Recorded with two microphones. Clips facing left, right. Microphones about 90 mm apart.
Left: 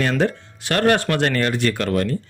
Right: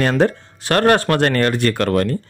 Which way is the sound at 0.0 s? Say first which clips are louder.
Right 4 dB; 40° right (ahead or behind).